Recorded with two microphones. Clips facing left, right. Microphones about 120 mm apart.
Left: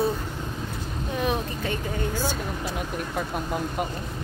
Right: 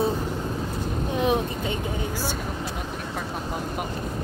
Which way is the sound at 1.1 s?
20° right (ahead or behind).